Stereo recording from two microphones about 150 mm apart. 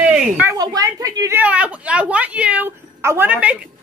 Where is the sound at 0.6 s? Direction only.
25° right (ahead or behind).